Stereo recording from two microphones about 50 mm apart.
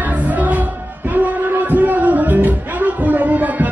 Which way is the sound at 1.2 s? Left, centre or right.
Right.